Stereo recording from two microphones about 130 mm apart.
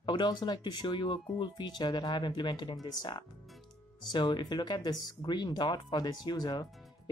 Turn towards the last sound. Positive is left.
turn(degrees=35)  # may be behind; listen again after turning